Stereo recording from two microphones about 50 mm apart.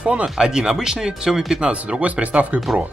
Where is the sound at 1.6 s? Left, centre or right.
Right.